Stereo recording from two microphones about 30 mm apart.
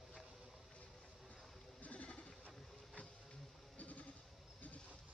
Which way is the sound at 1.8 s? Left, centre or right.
Left.